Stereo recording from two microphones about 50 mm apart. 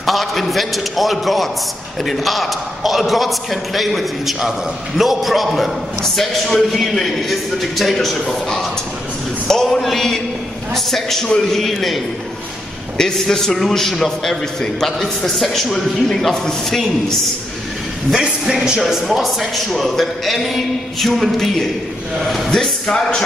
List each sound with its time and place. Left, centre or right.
0.0 s a man's voice: centre
18.1 s a man's voice: centre